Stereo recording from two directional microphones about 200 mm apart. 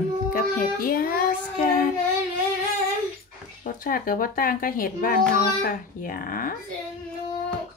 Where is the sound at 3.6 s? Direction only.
45° left (ahead or behind).